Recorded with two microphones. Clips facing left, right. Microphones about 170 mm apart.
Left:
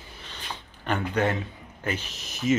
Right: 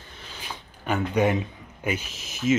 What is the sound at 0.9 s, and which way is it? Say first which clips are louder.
A man's voice: right 3 dB; 10° right (ahead or behind).